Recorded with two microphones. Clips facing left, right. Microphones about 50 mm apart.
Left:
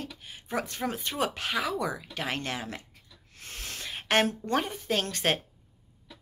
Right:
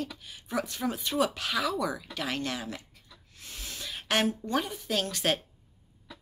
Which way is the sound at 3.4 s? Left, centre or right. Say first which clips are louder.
Left 2 dB; left.